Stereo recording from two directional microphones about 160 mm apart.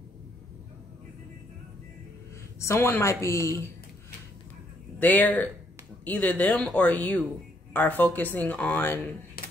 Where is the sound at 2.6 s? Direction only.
15° left (ahead or behind).